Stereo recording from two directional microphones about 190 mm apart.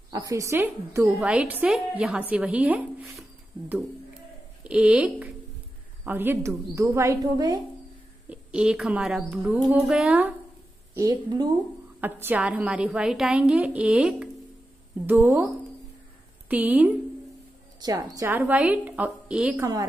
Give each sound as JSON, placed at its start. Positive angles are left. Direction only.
{"t": 0.1, "sound": "a woman's voice", "side_deg": -15}
{"t": 8.3, "sound": "a woman's voice", "side_deg": -5}
{"t": 11.0, "sound": "speech", "side_deg": -20}
{"t": 12.0, "sound": "a woman's voice", "side_deg": -10}
{"t": 17.7, "sound": "a woman's voice", "side_deg": -20}